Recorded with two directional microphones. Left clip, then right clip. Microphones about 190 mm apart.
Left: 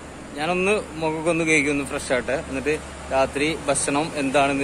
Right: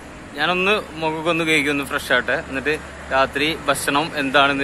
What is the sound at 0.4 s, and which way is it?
A man's voice, centre (ahead or behind).